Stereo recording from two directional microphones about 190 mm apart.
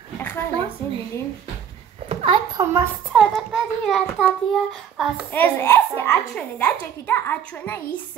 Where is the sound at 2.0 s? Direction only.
30° right (ahead or behind).